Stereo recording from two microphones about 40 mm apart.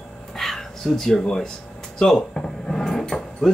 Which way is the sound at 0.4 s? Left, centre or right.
Centre.